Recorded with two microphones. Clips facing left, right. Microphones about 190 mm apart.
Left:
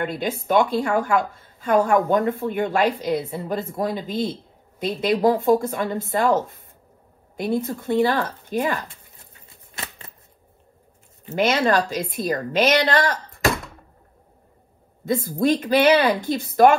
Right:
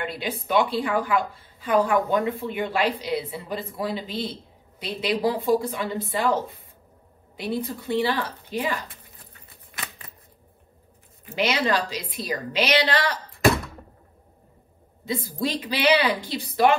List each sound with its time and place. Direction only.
0.0 s speech: 50° left (ahead or behind)
11.3 s speech: 50° left (ahead or behind)
15.0 s speech: 50° left (ahead or behind)